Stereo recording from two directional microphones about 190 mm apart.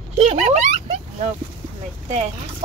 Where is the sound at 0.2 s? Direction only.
35° right (ahead or behind).